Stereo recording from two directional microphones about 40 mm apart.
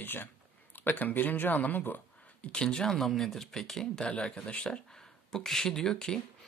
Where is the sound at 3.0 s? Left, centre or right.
Centre.